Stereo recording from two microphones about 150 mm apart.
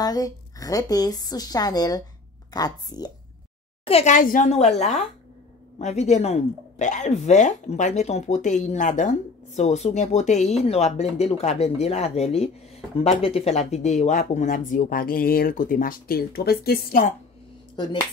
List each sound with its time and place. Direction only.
0.0 s a woman's voice: 25° left (ahead or behind)
3.8 s a woman's voice: 45° left (ahead or behind); by 4.5 s 60° left (ahead or behind)
4.5 s speech: 45° left (ahead or behind); by 17.1 s 75° left (ahead or behind)